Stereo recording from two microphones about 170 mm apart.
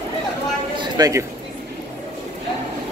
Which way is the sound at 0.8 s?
25° right (ahead or behind).